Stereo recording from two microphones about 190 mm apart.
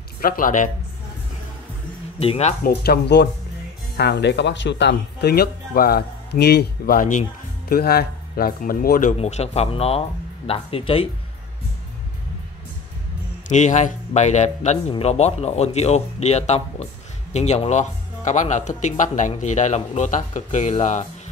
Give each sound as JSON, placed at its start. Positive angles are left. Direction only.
{"t": 0.2, "sound": "speech", "side_deg": 45}
{"t": 2.1, "sound": "speech", "side_deg": 30}
{"t": 2.6, "sound": "speech", "side_deg": 55}
{"t": 7.7, "sound": "speech", "side_deg": 55}
{"t": 9.2, "sound": "speech", "side_deg": 35}
{"t": 13.5, "sound": "speech", "side_deg": 40}